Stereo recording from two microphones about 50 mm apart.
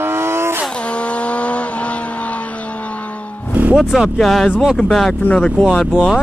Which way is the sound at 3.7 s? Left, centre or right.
Centre.